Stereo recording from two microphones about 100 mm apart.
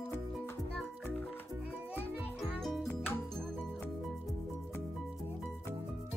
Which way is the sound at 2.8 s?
20° left (ahead or behind).